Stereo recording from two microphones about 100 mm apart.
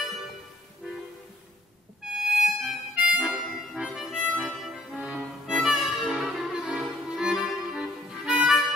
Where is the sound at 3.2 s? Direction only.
5° right (ahead or behind).